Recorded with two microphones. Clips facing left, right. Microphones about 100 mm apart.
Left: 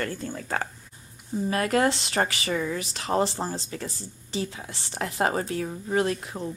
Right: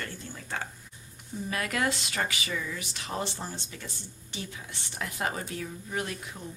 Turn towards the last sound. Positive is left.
turn(degrees=35)  # may be behind; listen again after turning